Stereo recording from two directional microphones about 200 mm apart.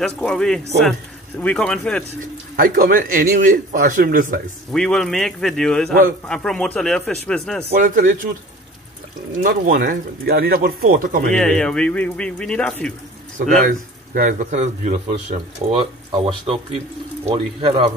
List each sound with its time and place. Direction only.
0.0 s speech: 5° left (ahead or behind)
2.5 s speech: 45° right (ahead or behind)
4.7 s speech: 5° left (ahead or behind)
7.7 s speech: 40° right (ahead or behind)
9.4 s speech: 45° right (ahead or behind)
11.3 s speech: 5° left (ahead or behind)
13.7 s speech: 45° right (ahead or behind); by 17.9 s 25° right (ahead or behind)